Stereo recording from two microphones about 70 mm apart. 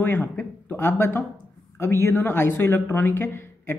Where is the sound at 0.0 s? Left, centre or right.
Left.